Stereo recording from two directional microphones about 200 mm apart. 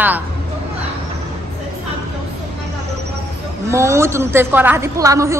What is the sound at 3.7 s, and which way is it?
A woman's voice, 15° right (ahead or behind).